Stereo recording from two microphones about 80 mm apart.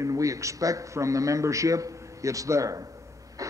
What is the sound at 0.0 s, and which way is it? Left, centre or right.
A man's voice, right.